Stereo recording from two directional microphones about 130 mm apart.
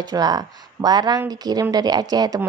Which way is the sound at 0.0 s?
30° right (ahead or behind).